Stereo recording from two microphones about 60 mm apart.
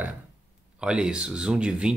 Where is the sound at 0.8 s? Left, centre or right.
Centre.